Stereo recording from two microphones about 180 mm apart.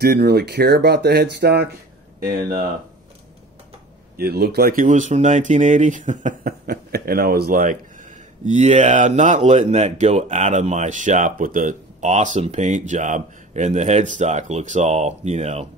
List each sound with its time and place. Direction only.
0.0 s speech: 60° right (ahead or behind)
2.2 s speech: 50° right (ahead or behind)
4.2 s speech: 60° right (ahead or behind)
8.5 s speech: 40° right (ahead or behind)